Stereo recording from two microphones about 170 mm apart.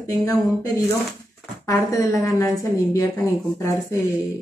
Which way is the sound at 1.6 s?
20° left (ahead or behind).